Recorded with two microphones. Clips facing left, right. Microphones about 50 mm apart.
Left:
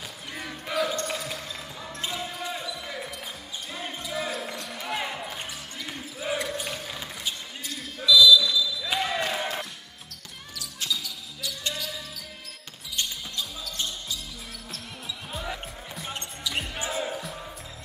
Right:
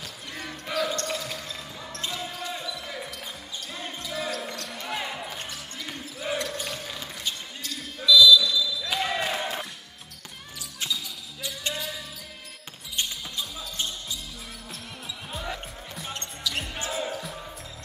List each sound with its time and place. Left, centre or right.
0.3 s basketball bounce: centre
10.6 s basketball bounce: right
12.9 s basketball bounce: centre
14.7 s music: centre
16.1 s basketball bounce: centre